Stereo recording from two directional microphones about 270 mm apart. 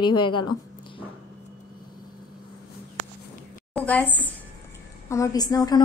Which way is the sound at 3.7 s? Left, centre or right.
Centre.